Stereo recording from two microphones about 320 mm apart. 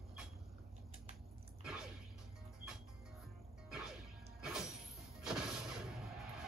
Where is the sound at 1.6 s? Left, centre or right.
Centre.